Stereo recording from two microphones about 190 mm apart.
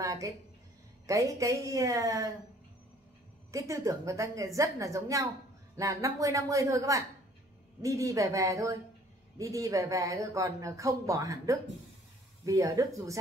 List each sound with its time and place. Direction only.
0.0 s a sound: 15° right (ahead or behind)
1.0 s speech: 15° right (ahead or behind)
3.5 s speech: 15° right (ahead or behind)